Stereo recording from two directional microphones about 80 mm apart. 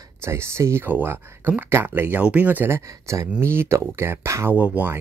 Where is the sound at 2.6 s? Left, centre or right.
Right.